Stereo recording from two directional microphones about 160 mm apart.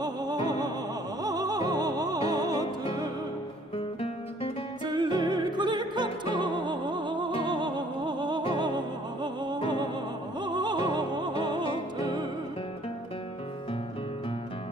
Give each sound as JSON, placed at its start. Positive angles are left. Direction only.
{"t": 0.0, "sound": "music", "side_deg": -25}
{"t": 3.7, "sound": "music", "side_deg": 35}
{"t": 4.8, "sound": "music", "side_deg": -25}
{"t": 10.4, "sound": "opera", "side_deg": -25}
{"t": 11.4, "sound": "music", "side_deg": -30}